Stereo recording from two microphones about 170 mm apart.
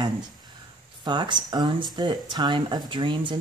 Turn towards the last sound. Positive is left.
turn(degrees=-30)  # may be behind; listen again after turning